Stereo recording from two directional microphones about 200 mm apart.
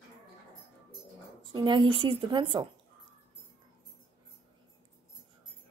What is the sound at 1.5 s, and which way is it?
A woman's voice, 25° right (ahead or behind).